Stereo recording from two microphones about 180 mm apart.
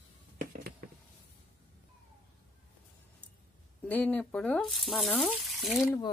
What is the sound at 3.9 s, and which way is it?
Speech, 10° left (ahead or behind).